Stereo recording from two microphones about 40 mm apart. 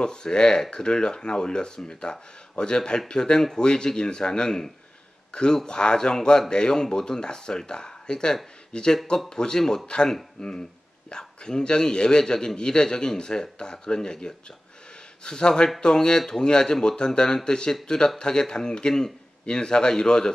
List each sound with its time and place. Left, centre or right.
0.0 s a man's voice: centre